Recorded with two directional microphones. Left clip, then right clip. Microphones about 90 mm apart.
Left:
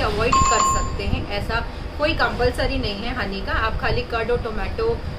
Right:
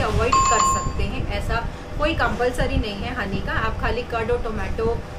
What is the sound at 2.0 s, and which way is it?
A woman's voice, 5° left (ahead or behind).